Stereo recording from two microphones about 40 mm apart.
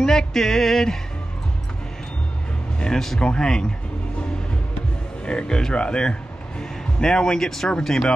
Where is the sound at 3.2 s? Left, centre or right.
Left.